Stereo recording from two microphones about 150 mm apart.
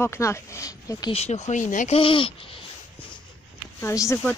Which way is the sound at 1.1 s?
45° left (ahead or behind).